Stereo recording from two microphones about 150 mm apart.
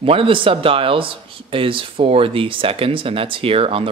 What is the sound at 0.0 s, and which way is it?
Speech, 35° right (ahead or behind).